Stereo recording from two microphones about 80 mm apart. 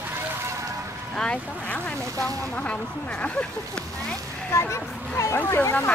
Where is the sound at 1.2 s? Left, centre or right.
Centre.